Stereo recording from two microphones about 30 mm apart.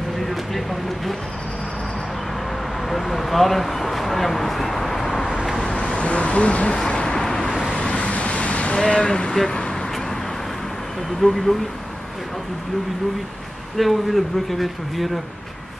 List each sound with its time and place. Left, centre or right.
0.3 s speech: centre
2.9 s speech: centre
5.7 s speech: left
6.9 s vehicle: left
7.2 s vehicle: centre
7.7 s vehicle: left
8.1 s vehicle: left
8.7 s speech: left
11.1 s speech: centre
13.7 s speech: centre